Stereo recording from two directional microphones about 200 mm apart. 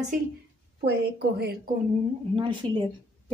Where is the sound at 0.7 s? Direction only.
55° right (ahead or behind).